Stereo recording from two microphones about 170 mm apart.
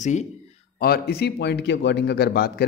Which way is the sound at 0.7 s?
65° left (ahead or behind).